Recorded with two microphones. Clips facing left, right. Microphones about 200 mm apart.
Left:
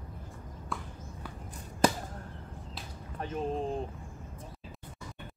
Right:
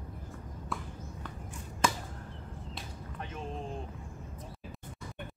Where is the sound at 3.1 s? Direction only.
40° left (ahead or behind).